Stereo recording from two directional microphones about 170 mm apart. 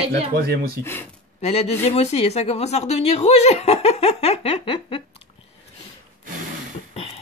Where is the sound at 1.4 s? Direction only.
40° left (ahead or behind).